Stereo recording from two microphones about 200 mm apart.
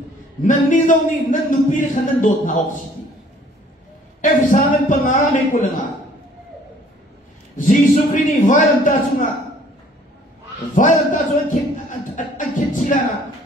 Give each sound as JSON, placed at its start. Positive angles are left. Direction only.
{"t": 0.4, "sound": "a man's voice", "side_deg": 40}
{"t": 4.2, "sound": "a man's voice", "side_deg": 40}
{"t": 7.5, "sound": "a man's voice", "side_deg": 40}
{"t": 10.7, "sound": "speech", "side_deg": 40}